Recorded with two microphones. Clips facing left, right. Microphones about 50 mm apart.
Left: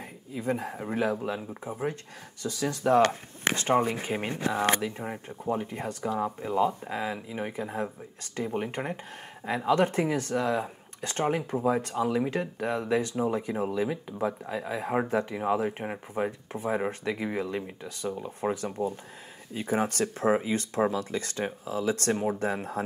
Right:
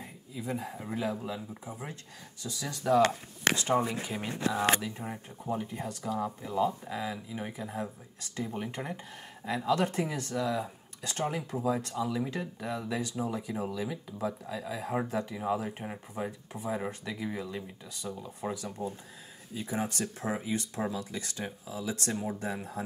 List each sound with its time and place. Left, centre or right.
0.0 s speech: left
5.9 s speech: left